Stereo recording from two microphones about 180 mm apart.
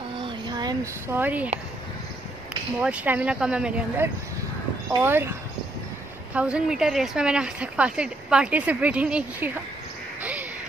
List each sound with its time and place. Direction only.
0.2 s a sound: 25° right (ahead or behind)
1.1 s speech: 10° right (ahead or behind)
2.8 s speech: 5° right (ahead or behind)
6.3 s a woman's voice: 5° right (ahead or behind)